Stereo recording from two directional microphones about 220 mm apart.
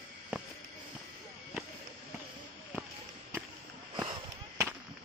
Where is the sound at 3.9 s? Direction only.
20° right (ahead or behind).